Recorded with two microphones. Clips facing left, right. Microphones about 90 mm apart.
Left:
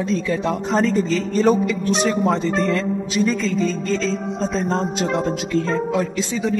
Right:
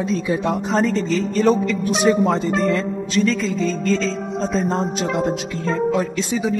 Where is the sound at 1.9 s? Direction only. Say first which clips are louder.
Right 3 dB; 5° right (ahead or behind).